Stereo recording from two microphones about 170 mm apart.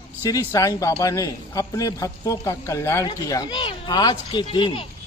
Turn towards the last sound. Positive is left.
turn(degrees=30)  # may be behind; listen again after turning